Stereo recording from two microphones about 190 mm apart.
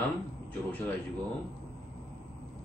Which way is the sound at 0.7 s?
10° left (ahead or behind).